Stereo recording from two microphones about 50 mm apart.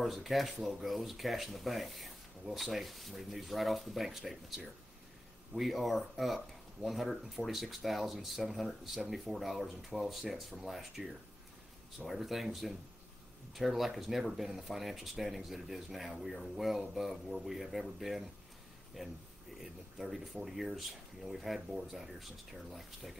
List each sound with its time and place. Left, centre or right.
0.0 s speech: centre
12.1 s speech: centre